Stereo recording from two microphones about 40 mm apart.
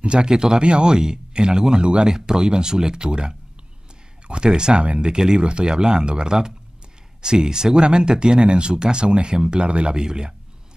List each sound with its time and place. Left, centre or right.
0.0 s speech: right
5.1 s speech: centre